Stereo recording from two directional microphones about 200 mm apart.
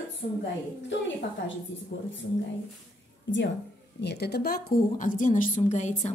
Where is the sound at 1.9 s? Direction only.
60° left (ahead or behind).